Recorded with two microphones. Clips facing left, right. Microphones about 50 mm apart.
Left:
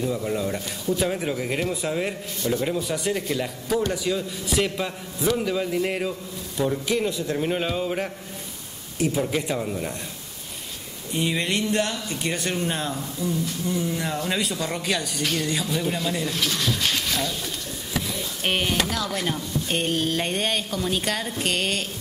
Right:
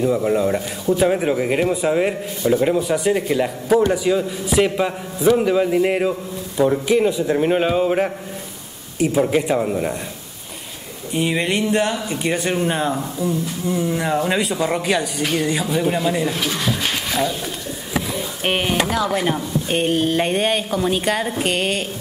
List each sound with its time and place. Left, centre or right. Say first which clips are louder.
0.0 s speech: right 8 dB; right
9.2 s speech: right 8 dB; right
11.1 s speech: right 5 dB; centre